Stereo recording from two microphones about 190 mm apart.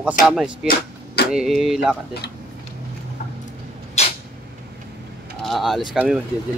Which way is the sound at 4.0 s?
35° left (ahead or behind).